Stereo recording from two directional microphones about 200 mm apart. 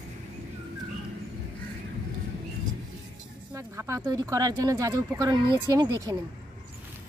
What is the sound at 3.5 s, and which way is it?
Speech, 15° right (ahead or behind).